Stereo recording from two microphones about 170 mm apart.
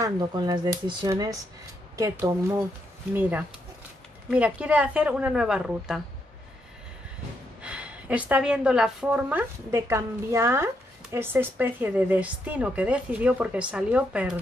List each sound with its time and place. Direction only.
0.0 s a woman's voice: 25° right (ahead or behind); by 5.9 s 5° right (ahead or behind)
7.6 s a woman's voice: 5° right (ahead or behind)